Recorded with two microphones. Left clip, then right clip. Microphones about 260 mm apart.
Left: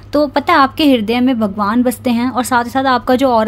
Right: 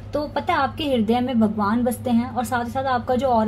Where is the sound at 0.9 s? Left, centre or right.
Left.